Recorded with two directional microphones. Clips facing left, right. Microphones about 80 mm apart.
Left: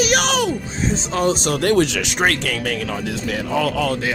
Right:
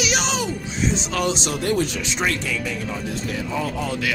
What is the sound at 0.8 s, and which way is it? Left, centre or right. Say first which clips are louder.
Speech: left 2 dB; left.